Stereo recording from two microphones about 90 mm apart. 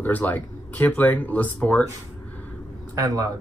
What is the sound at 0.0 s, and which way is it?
Speech, 20° left (ahead or behind).